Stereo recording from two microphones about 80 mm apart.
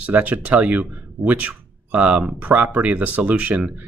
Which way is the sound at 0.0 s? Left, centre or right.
Centre.